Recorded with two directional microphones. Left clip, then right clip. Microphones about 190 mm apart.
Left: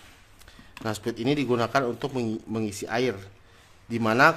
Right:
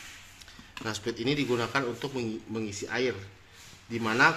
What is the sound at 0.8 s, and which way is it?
A man's voice, 65° left (ahead or behind).